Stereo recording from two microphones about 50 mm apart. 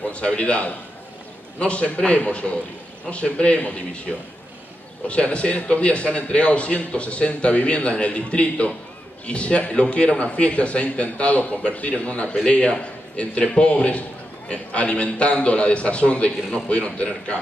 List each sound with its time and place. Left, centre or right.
0.1 s a man's voice: left
5.0 s a man's voice: left